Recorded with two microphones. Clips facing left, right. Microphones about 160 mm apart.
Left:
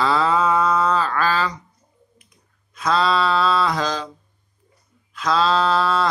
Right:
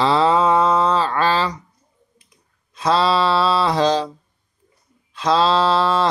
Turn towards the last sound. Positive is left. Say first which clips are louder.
# right 2 dB
turn(degrees=-30)  # may be behind; listen again after turning